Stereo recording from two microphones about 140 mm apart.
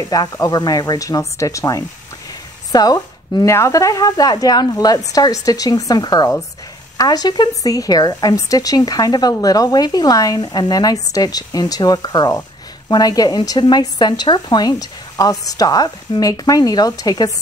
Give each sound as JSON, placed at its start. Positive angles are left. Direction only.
{"t": 0.1, "sound": "speech", "side_deg": 25}